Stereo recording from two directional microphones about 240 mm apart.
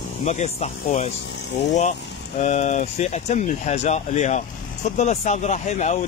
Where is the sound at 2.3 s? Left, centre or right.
Left.